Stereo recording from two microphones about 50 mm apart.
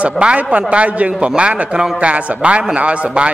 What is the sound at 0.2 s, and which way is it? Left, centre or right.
A man's voice, right.